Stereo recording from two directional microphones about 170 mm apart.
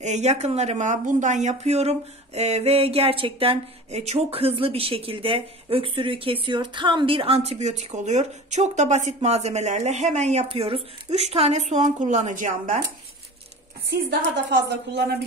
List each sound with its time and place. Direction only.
0.0 s speech: 40° right (ahead or behind)
13.8 s a woman's voice: 80° right